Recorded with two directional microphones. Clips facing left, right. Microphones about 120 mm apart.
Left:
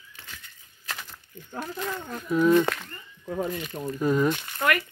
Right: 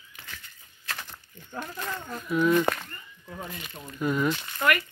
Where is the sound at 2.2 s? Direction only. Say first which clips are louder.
Left 3 dB; 35° left (ahead or behind).